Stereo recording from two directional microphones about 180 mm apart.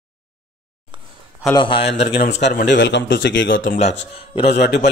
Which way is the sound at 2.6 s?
75° left (ahead or behind).